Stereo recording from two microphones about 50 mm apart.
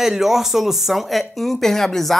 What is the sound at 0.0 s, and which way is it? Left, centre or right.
Speech, centre.